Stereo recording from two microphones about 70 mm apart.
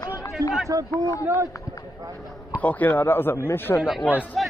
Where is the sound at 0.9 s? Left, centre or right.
Left.